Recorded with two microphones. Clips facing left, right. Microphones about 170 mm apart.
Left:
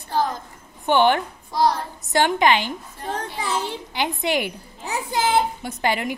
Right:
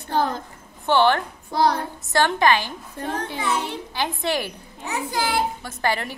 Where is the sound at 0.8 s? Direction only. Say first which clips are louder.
Left 1 dB; 15° left (ahead or behind).